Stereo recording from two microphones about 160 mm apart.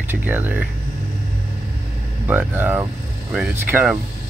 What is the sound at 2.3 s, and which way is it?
Speech, 10° right (ahead or behind).